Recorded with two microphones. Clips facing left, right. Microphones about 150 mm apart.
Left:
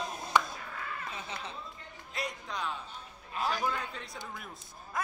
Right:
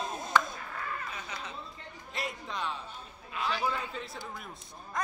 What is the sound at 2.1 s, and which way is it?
Music, centre (ahead or behind).